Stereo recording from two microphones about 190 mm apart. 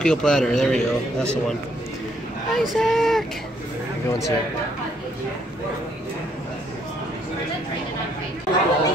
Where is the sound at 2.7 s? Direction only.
Centre (ahead or behind).